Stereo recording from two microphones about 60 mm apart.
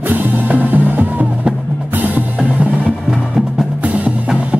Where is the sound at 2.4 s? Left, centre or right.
Centre.